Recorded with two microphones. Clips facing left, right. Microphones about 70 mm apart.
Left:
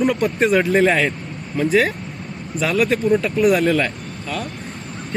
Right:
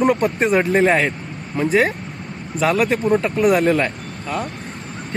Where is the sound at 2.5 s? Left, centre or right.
Right.